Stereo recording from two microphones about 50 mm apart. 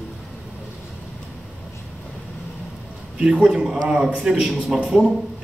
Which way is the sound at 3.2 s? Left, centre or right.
Centre.